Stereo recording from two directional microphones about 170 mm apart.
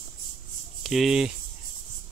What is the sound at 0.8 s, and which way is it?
Speech, centre (ahead or behind).